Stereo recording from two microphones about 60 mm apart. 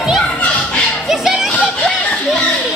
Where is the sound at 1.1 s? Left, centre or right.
Centre.